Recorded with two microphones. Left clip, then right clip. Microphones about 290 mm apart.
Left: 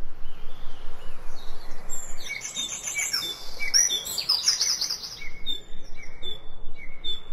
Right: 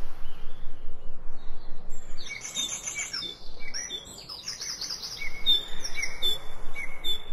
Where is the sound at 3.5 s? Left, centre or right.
Left.